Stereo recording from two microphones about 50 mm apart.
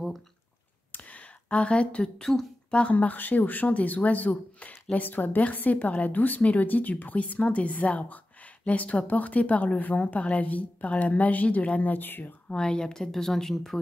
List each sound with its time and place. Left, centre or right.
0.9 s a sound: left
2.1 s a woman's voice: centre
2.9 s speech: left
12.4 s a woman's voice: centre